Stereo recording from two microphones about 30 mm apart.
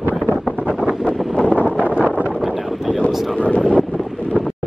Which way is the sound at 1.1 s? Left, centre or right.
Centre.